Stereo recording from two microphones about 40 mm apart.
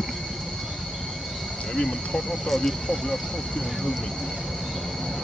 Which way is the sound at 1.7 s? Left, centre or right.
Centre.